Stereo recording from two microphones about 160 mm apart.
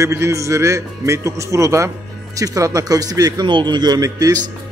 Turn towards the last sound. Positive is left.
turn(degrees=-20)  # may be behind; listen again after turning